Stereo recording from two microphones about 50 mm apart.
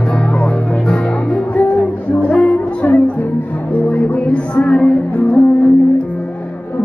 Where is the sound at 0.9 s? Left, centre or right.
Left.